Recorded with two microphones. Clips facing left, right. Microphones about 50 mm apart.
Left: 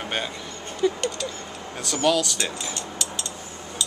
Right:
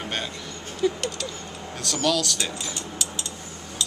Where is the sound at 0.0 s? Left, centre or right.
Centre.